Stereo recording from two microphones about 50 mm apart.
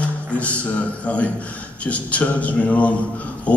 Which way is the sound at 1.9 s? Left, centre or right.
Left.